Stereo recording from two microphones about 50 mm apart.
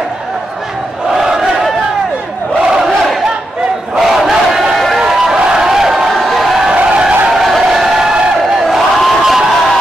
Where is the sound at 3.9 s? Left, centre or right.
Centre.